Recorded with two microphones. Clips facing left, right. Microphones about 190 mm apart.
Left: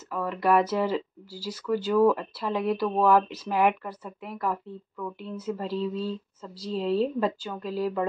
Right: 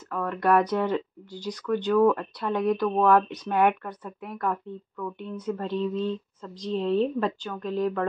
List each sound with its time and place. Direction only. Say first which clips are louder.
0.1 s speech: right 1 dB; 5° left (ahead or behind)